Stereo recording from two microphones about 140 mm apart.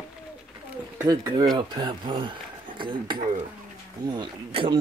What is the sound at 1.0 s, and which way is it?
Speech, 25° right (ahead or behind).